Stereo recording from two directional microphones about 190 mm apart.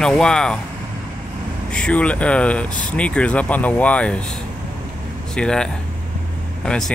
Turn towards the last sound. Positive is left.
turn(degrees=0)  # may be behind; listen again after turning